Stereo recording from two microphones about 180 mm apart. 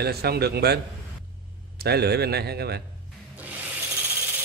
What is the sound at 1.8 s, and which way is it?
A man's voice, 65° right (ahead or behind).